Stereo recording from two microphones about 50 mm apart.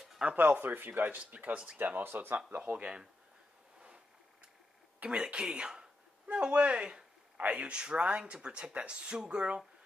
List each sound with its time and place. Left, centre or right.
0.4 s speech: right
1.2 s speech: right
2.6 s speech: right
5.0 s speech: centre